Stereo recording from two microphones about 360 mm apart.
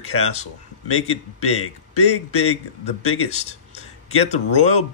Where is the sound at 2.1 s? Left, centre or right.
Left.